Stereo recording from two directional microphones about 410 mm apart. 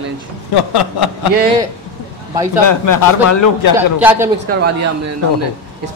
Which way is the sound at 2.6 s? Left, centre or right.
Left.